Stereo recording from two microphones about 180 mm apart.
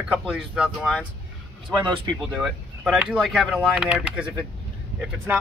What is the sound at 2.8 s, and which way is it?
Speech, 10° right (ahead or behind).